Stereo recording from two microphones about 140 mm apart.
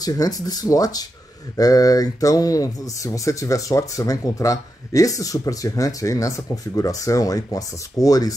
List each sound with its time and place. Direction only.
0.0 s speech: 25° left (ahead or behind)